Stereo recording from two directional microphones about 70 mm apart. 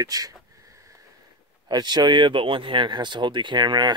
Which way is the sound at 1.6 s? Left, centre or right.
Right.